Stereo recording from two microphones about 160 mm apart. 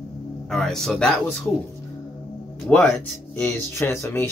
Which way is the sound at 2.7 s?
5° left (ahead or behind).